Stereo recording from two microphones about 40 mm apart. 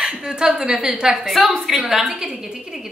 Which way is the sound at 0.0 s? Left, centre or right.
Centre.